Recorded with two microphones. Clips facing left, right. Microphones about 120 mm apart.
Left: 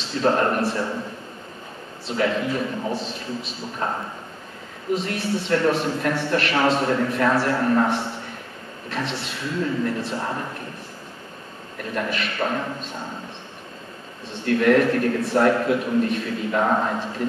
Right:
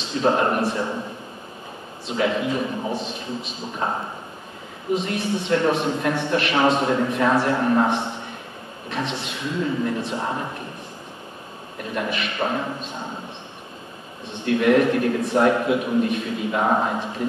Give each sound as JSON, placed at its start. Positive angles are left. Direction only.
{"t": 0.1, "sound": "a man's voice", "side_deg": -15}
{"t": 2.1, "sound": "a man's voice", "side_deg": -15}
{"t": 11.9, "sound": "a man's voice", "side_deg": -15}
{"t": 14.4, "sound": "a man's voice", "side_deg": -15}